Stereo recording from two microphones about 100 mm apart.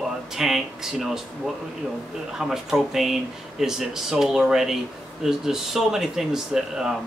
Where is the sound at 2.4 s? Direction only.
5° right (ahead or behind).